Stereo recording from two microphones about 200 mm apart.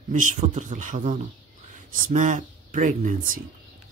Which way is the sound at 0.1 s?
40° right (ahead or behind).